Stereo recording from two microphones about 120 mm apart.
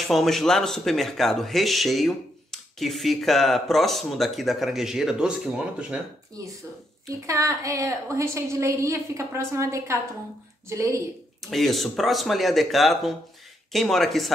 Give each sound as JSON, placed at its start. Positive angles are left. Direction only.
{"t": 0.1, "sound": "speech", "side_deg": 0}
{"t": 6.4, "sound": "a woman's voice", "side_deg": -30}
{"t": 11.5, "sound": "speech", "side_deg": 0}